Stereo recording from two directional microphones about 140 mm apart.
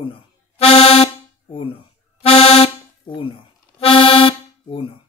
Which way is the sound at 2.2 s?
45° left (ahead or behind).